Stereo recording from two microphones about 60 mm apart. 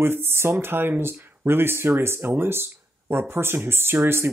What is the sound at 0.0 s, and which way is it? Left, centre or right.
Speech, right.